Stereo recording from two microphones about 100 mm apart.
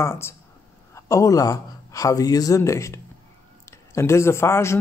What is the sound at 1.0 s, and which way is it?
Speech, 35° left (ahead or behind).